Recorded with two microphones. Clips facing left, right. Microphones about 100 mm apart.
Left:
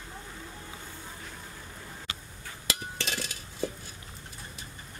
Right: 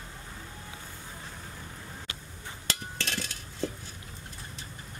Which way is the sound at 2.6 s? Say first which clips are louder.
Left 1 dB; 5° left (ahead or behind).